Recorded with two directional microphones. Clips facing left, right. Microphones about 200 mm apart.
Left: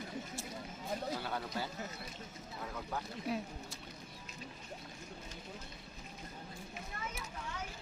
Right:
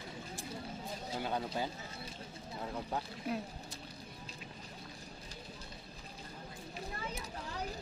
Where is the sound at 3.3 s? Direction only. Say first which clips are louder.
Even; centre (ahead or behind).